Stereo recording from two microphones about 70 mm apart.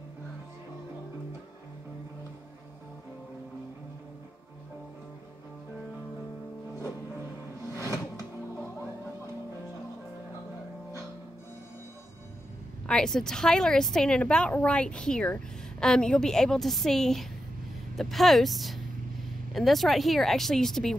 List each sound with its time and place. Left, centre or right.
7.6 s music: left
12.8 s a woman's voice: centre